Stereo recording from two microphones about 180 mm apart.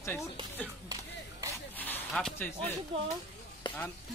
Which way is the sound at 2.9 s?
30° right (ahead or behind).